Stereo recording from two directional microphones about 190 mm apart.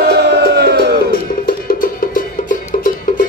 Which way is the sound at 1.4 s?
45° left (ahead or behind).